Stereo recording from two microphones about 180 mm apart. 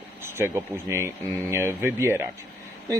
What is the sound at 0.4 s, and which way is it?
Speech, 15° right (ahead or behind).